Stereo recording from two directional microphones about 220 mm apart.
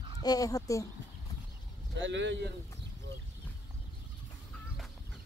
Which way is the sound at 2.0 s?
55° right (ahead or behind).